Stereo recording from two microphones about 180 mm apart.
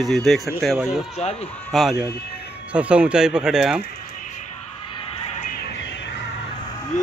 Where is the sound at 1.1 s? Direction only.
35° left (ahead or behind).